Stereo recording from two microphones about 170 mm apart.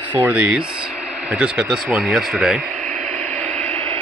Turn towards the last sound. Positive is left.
turn(degrees=-35)  # may be behind; listen again after turning